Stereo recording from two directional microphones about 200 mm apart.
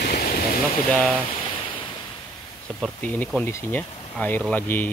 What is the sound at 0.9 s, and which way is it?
Speech, 5° left (ahead or behind).